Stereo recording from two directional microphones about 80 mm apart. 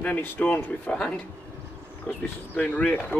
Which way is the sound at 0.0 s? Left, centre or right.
Left.